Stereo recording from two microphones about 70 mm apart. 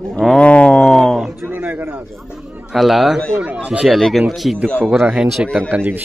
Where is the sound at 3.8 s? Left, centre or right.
Centre.